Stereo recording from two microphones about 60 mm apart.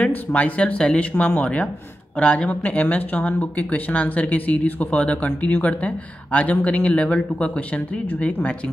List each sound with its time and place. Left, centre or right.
0.0 s speech: left